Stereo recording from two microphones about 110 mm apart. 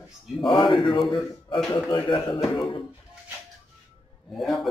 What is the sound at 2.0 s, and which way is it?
Speech, 45° left (ahead or behind).